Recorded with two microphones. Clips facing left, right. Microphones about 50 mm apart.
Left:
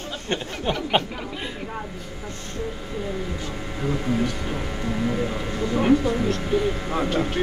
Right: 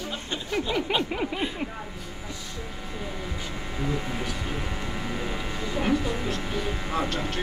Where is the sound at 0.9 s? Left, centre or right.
Left.